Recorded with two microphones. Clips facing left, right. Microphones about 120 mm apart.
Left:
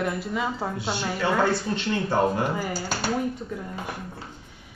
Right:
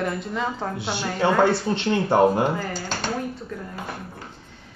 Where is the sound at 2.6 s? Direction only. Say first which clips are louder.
Even; 10° left (ahead or behind).